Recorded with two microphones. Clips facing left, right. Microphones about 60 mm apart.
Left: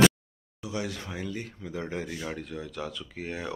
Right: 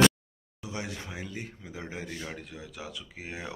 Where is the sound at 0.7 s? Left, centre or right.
Right.